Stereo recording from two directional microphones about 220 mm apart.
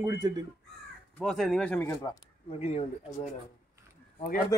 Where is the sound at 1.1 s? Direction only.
Centre (ahead or behind).